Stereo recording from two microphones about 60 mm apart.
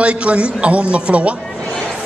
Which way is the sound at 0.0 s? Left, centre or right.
Centre.